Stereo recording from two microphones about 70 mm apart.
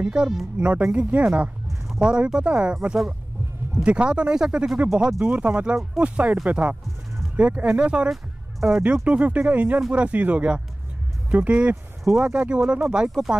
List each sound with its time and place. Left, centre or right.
0.0 s speech: centre